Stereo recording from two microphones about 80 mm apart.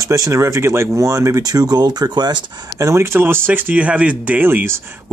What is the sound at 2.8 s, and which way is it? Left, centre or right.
Speech, right.